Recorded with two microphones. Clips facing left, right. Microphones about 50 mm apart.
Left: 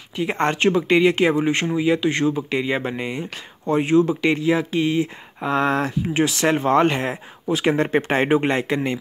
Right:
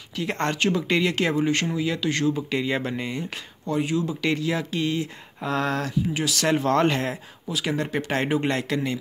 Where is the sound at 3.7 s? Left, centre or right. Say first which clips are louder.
Left 8 dB; left.